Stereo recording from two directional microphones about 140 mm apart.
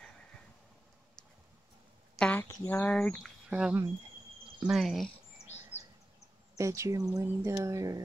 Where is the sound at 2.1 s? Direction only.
10° left (ahead or behind).